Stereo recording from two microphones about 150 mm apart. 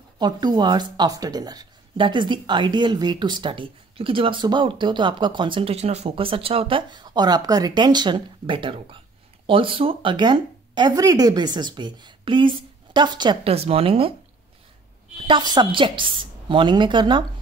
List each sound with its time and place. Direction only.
0.2 s speech: 30° right (ahead or behind)
13.5 s speech: 40° right (ahead or behind)
15.2 s speech: 30° right (ahead or behind)